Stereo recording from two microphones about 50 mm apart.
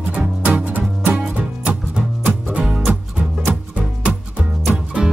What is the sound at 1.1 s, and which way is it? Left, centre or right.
Music, centre.